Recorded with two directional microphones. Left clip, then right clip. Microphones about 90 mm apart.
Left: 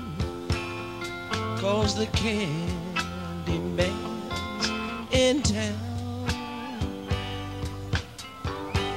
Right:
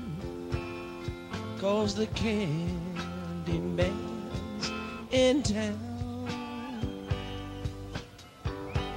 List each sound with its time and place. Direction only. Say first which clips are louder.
1.3 s music: left 3 dB; 30° left (ahead or behind)